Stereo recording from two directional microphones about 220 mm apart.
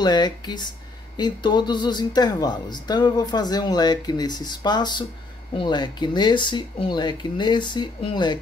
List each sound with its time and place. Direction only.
0.0 s speech: 20° left (ahead or behind)